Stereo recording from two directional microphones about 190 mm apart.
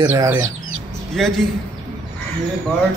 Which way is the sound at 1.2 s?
Centre (ahead or behind).